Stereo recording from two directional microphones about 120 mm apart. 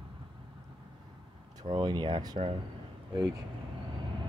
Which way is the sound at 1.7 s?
40° right (ahead or behind).